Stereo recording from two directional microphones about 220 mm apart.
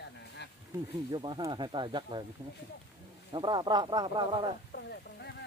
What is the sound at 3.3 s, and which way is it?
Speech, 20° right (ahead or behind).